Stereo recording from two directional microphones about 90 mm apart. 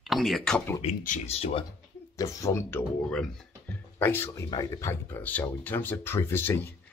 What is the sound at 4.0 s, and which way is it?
Speech, 25° left (ahead or behind).